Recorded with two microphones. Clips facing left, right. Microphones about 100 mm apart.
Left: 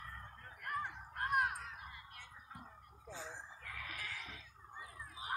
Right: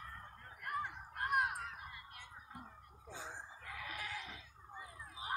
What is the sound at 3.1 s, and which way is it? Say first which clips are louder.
Goat: even; 15° right (ahead or behind).